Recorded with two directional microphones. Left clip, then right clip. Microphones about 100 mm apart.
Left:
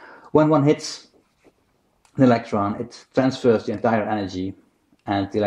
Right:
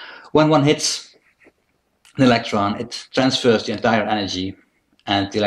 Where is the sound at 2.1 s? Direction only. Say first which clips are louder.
Right 2 dB; 50° left (ahead or behind).